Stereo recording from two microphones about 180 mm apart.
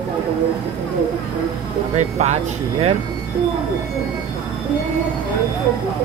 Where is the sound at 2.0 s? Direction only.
40° right (ahead or behind).